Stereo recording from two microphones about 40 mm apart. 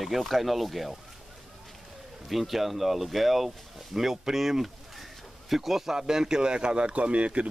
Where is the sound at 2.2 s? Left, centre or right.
Centre.